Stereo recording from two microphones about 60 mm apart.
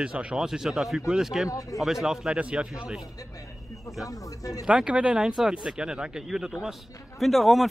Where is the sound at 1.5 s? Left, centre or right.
Left.